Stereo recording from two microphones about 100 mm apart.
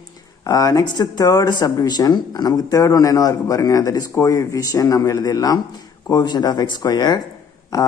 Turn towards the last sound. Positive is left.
turn(degrees=35)  # may be behind; listen again after turning